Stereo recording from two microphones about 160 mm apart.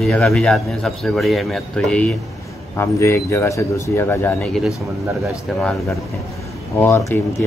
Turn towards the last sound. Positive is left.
turn(degrees=15)  # may be behind; listen again after turning